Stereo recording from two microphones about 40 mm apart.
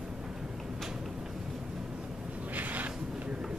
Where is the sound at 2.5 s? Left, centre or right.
Right.